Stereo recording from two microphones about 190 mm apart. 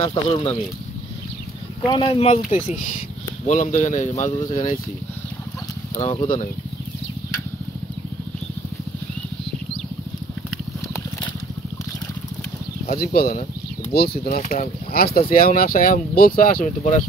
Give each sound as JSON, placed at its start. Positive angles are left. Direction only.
{"t": 0.0, "sound": "speech", "side_deg": 25}
{"t": 1.9, "sound": "speech", "side_deg": 25}
{"t": 6.0, "sound": "speech", "side_deg": 30}
{"t": 12.8, "sound": "speech", "side_deg": 50}
{"t": 13.9, "sound": "speech", "side_deg": 55}
{"t": 14.9, "sound": "speech", "side_deg": 50}